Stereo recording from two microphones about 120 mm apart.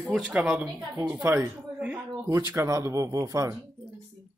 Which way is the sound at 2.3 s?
25° right (ahead or behind).